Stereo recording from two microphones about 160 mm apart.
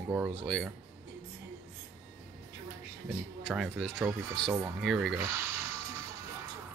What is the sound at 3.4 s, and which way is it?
Speech, centre (ahead or behind).